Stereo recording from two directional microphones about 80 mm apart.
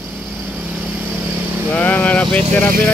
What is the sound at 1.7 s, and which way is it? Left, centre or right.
Speech, centre.